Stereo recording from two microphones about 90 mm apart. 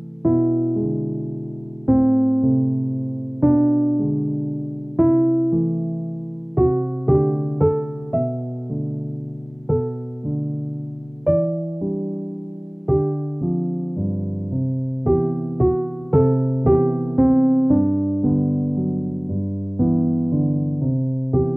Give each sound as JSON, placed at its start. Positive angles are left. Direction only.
{"t": 0.2, "sound": "music", "side_deg": -5}
{"t": 1.9, "sound": "piano", "side_deg": 0}
{"t": 3.3, "sound": "music", "side_deg": -5}
{"t": 9.7, "sound": "music", "side_deg": -5}